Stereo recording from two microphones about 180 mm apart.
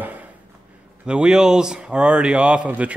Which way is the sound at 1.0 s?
5° right (ahead or behind).